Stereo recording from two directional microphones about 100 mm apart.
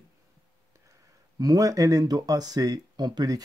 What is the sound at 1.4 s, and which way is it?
Speech, 40° right (ahead or behind).